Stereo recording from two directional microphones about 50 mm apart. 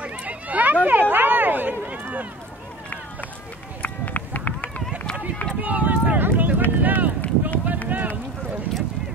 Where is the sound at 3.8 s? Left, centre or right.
Left.